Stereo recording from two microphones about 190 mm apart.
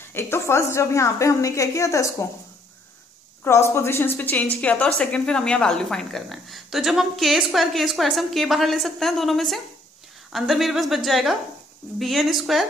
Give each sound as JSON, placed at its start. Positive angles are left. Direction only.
{"t": 0.1, "sound": "a woman's voice", "side_deg": 15}
{"t": 3.4, "sound": "a woman's voice", "side_deg": 15}